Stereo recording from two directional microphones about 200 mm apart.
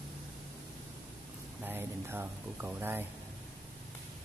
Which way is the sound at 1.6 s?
10° right (ahead or behind).